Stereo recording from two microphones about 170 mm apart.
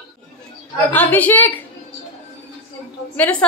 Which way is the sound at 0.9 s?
10° left (ahead or behind).